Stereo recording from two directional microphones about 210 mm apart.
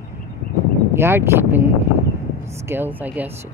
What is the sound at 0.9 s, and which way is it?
Speech, 10° right (ahead or behind).